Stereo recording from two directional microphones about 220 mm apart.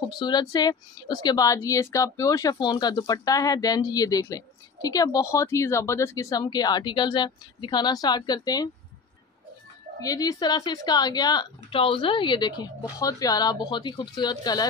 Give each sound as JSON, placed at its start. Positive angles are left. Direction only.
{"t": 0.2, "sound": "a woman's voice", "side_deg": 20}
{"t": 9.9, "sound": "a woman's voice", "side_deg": 15}